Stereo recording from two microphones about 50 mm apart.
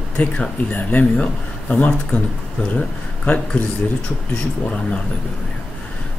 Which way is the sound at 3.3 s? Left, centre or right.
Left.